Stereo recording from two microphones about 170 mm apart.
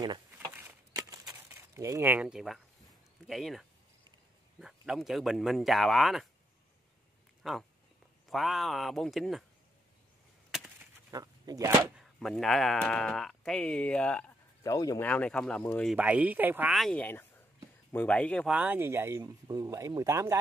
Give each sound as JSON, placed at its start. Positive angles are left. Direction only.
{"t": 0.6, "sound": "a sound", "side_deg": -15}
{"t": 3.3, "sound": "speech", "side_deg": 0}
{"t": 7.4, "sound": "speech", "side_deg": 0}
{"t": 11.1, "sound": "speech", "side_deg": -20}
{"t": 11.9, "sound": "speech", "side_deg": 0}
{"t": 14.6, "sound": "speech", "side_deg": 20}
{"t": 15.0, "sound": "speech", "side_deg": 5}
{"t": 16.0, "sound": "speech", "side_deg": -10}
{"t": 16.7, "sound": "speech", "side_deg": 5}
{"t": 18.5, "sound": "speech", "side_deg": -10}